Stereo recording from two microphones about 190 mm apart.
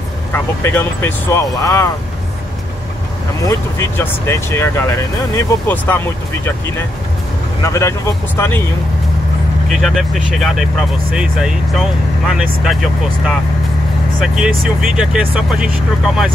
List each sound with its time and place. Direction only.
0.3 s speech: 10° left (ahead or behind)
3.4 s speech: 15° left (ahead or behind)
7.6 s speech: 15° left (ahead or behind)
9.7 s speech: centre (ahead or behind)